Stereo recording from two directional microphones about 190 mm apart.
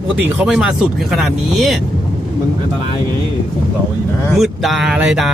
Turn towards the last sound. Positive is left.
turn(degrees=-5)  # may be behind; listen again after turning